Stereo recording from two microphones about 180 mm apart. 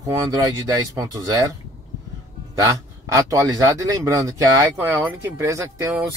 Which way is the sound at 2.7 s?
20° right (ahead or behind).